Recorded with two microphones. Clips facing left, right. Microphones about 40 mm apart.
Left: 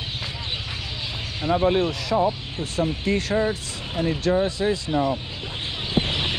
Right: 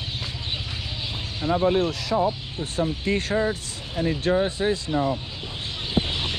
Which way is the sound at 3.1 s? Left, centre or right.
Right.